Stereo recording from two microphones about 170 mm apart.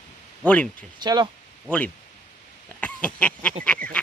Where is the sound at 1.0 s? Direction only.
25° right (ahead or behind).